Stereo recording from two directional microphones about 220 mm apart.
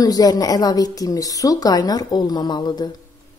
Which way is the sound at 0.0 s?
15° left (ahead or behind).